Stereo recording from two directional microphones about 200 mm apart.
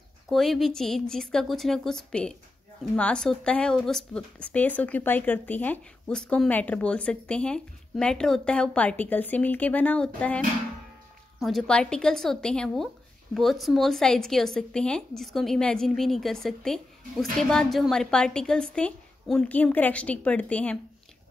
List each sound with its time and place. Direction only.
0.3 s speech: centre (ahead or behind)